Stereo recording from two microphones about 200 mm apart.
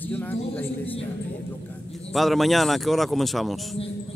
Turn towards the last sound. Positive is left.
turn(degrees=0)  # may be behind; listen again after turning